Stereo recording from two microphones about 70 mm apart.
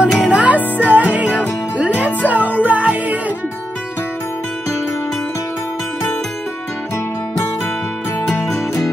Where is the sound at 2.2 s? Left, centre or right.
Right.